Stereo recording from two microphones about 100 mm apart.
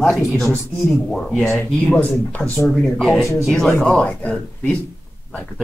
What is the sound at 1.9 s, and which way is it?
Speech, 15° left (ahead or behind).